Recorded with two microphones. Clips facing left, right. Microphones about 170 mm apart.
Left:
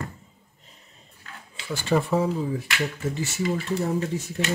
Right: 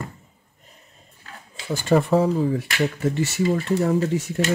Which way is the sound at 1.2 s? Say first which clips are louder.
Right 2 dB; 45° right (ahead or behind).